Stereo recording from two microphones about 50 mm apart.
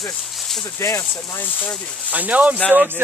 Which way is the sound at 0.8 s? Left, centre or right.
Left.